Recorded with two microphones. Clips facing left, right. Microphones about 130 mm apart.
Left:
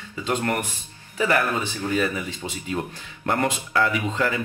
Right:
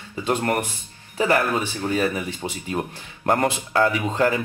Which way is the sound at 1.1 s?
35° right (ahead or behind).